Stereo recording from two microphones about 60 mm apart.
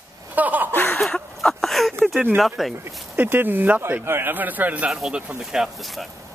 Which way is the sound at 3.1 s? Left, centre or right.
Right.